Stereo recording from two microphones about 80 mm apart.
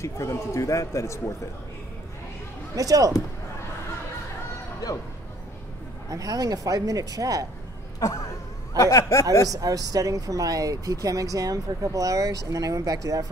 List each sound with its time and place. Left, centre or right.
0.0 s a man's voice: left
2.7 s speech: right
6.0 s speech: right
8.0 s a sound: left
8.7 s speech: left
9.5 s speech: right